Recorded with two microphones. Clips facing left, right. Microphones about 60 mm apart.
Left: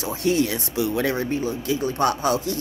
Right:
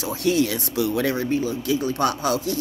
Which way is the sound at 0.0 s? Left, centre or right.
Left.